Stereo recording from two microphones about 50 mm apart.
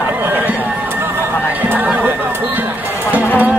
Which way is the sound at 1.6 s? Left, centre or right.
Right.